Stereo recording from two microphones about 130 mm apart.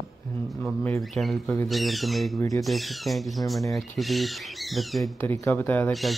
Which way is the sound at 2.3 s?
25° left (ahead or behind).